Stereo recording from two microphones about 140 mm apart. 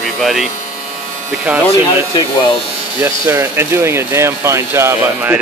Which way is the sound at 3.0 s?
20° right (ahead or behind).